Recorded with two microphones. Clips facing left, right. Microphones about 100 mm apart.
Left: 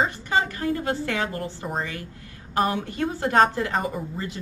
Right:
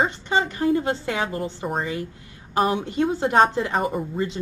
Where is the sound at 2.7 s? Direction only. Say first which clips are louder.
Right 4 dB; 20° right (ahead or behind).